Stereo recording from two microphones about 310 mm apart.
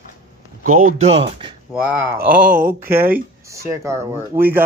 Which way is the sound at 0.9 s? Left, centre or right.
Centre.